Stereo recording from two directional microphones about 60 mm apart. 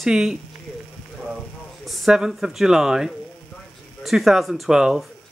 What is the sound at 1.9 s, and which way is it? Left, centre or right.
Speech, centre.